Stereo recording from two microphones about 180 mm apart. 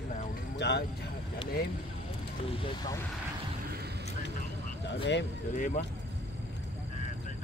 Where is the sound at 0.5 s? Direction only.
70° left (ahead or behind).